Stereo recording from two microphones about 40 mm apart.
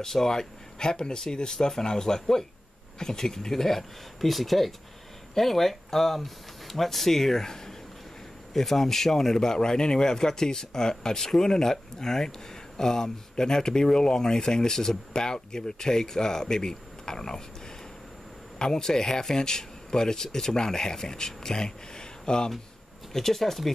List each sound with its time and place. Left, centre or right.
0.0 s speech: centre
18.6 s speech: centre
23.1 s speech: centre